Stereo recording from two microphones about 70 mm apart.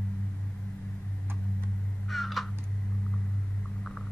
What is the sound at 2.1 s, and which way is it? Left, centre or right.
Frog, centre.